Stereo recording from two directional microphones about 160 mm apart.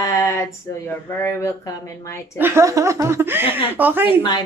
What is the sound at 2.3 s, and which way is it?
A woman's voice, 15° right (ahead or behind).